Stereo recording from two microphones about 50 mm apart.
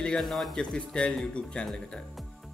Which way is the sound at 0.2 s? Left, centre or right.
Centre.